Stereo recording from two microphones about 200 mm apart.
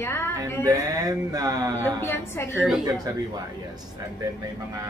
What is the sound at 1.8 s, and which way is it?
Speech, 10° left (ahead or behind).